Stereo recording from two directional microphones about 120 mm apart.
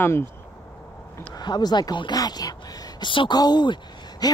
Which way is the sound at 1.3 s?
35° left (ahead or behind).